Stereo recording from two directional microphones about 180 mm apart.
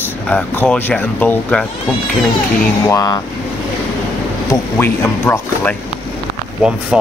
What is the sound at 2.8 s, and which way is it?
Speech, 20° left (ahead or behind).